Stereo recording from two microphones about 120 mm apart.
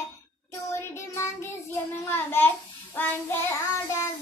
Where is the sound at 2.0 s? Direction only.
20° left (ahead or behind).